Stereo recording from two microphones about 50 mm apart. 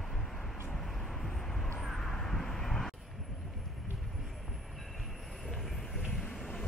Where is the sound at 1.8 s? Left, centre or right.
Centre.